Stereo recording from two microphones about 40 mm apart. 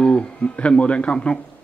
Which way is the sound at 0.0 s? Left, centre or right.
Left.